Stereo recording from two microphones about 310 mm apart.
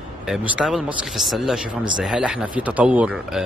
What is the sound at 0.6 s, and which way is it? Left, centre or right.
Speech, centre.